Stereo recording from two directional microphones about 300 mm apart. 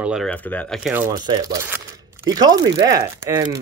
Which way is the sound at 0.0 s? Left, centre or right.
Centre.